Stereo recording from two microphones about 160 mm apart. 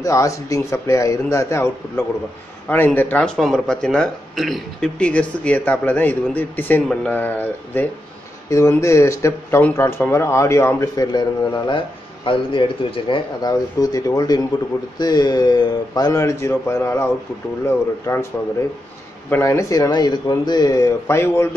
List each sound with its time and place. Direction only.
0.0 s speech: 20° left (ahead or behind)
19.3 s speech: 20° left (ahead or behind)